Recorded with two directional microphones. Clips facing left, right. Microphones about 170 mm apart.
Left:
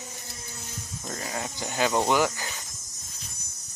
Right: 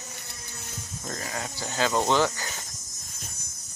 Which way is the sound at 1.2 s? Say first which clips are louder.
Left 3 dB; 25° left (ahead or behind).